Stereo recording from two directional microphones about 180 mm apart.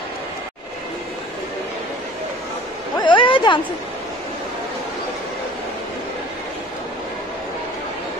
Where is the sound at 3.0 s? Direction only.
25° left (ahead or behind).